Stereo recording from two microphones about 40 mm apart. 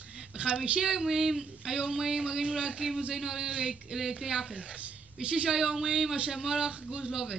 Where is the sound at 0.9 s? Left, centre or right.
Centre.